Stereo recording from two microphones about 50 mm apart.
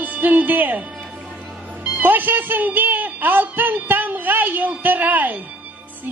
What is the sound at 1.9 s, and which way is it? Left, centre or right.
A woman's voice, right.